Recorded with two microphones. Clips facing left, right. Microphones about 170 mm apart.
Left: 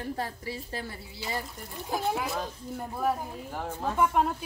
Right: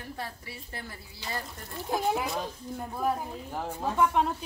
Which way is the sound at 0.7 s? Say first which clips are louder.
Left 5 dB; 30° left (ahead or behind).